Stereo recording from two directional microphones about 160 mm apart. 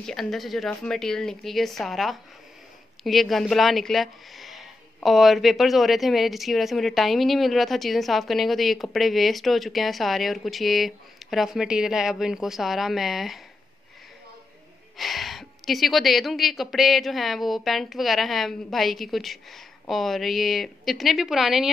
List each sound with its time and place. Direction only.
0.0 s speech: centre (ahead or behind)
15.0 s speech: centre (ahead or behind)